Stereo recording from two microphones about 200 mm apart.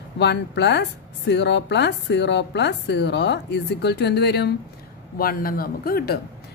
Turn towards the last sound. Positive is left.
turn(degrees=45)  # may be behind; listen again after turning